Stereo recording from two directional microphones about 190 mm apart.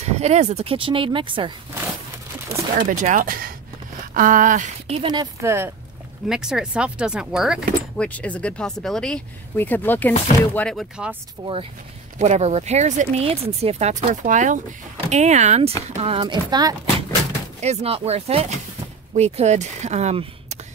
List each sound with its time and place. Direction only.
0.0 s speech: 35° right (ahead or behind)
2.8 s speech: 45° right (ahead or behind); by 5.7 s 15° right (ahead or behind)
6.2 s speech: 5° right (ahead or behind)
11.4 s speech: 20° right (ahead or behind)
12.2 s speech: 35° right (ahead or behind)
17.6 s speech: 35° right (ahead or behind)